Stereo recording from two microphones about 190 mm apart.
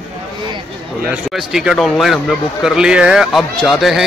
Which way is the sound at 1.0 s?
5° right (ahead or behind).